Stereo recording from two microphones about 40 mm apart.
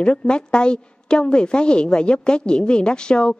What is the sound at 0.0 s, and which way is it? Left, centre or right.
A woman's voice, left.